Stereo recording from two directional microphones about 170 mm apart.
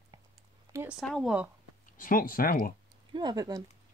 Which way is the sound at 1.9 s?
55° left (ahead or behind).